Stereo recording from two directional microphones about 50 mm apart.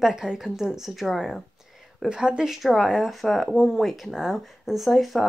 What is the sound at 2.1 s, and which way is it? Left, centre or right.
Speech, centre.